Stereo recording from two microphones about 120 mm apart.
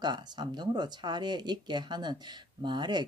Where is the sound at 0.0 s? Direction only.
35° right (ahead or behind).